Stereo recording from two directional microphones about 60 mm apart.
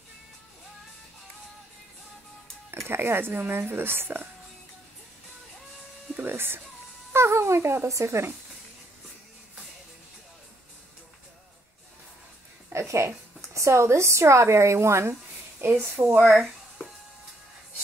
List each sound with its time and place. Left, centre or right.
2.9 s speech: right
6.1 s speech: right
7.1 s babbling: right
12.6 s a woman's voice: right
16.2 s a sound: centre